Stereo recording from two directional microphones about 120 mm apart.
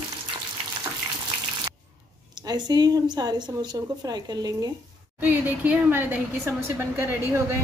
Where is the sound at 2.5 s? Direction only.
35° right (ahead or behind).